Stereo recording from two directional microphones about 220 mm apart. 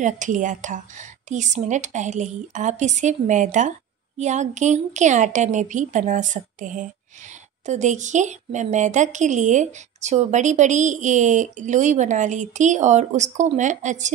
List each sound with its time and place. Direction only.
0.0 s a woman's voice: 35° right (ahead or behind)